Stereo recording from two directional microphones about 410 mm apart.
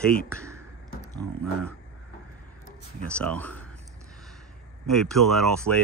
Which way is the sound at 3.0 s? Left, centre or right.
Centre.